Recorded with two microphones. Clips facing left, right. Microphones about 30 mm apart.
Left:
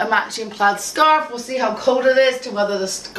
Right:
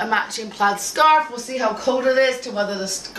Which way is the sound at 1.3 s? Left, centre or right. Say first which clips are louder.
Left 2 dB; centre.